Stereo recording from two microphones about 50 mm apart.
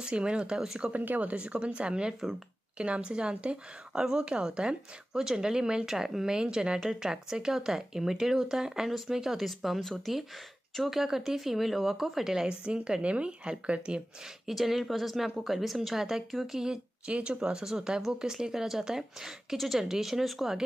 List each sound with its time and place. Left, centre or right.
0.0 s speech: centre
0.9 s a woman's voice: right
14.4 s a woman's voice: centre